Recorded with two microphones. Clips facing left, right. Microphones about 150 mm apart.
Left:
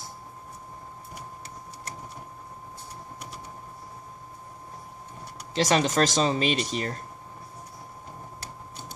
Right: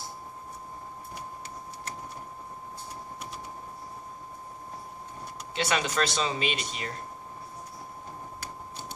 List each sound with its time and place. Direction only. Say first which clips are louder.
5.5 s speech: left 6 dB; 40° left (ahead or behind)